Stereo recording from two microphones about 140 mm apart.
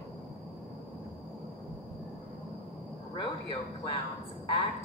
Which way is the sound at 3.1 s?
35° left (ahead or behind).